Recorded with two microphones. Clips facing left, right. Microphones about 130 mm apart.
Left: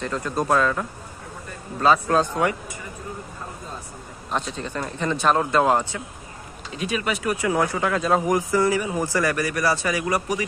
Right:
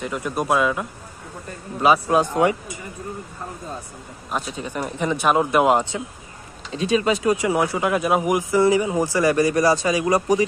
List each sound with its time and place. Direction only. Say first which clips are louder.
0.0 s speech: even; 15° right (ahead or behind)
4.3 s speech: even; 10° right (ahead or behind); by 10.4 s 25° right (ahead or behind)